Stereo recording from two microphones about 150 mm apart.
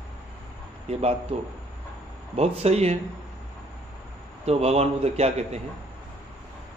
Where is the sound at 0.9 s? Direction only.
45° right (ahead or behind).